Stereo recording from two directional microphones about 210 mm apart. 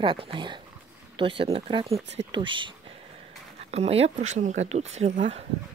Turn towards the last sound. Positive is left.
turn(degrees=-35)  # may be behind; listen again after turning